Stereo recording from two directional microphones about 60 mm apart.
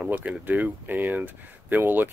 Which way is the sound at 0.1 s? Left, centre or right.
Right.